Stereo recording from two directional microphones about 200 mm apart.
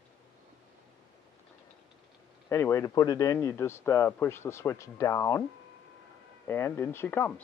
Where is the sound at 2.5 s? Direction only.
15° left (ahead or behind).